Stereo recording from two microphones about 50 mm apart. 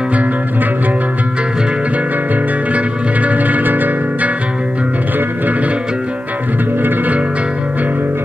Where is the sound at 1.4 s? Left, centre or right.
Centre.